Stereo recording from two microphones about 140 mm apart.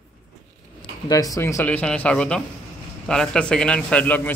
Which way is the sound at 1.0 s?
25° left (ahead or behind).